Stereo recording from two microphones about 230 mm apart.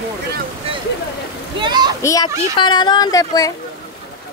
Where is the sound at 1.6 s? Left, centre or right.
Centre.